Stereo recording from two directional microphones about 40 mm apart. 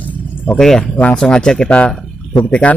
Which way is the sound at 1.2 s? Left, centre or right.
Centre.